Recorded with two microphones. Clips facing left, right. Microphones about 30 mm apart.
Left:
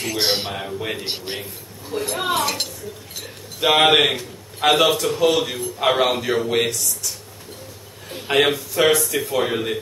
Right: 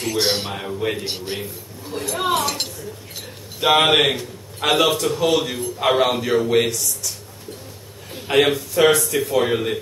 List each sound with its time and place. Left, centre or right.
0.2 s a man's voice: centre
0.5 s a man's voice: centre
1.0 s a man's voice: left
1.4 s a man's voice: centre
3.6 s a man's voice: centre
8.1 s a man's voice: centre